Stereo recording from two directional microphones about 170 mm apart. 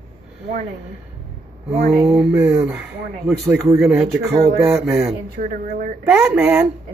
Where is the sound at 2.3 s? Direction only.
10° right (ahead or behind).